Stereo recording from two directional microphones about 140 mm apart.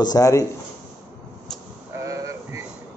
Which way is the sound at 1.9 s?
20° right (ahead or behind).